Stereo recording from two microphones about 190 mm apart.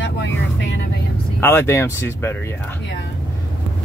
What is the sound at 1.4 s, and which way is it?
Speech, 10° left (ahead or behind).